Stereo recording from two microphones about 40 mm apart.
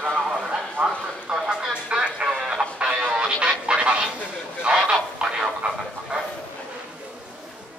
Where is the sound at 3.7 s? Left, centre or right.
Right.